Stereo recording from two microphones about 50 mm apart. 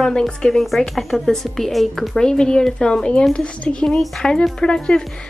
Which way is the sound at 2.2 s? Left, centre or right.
Centre.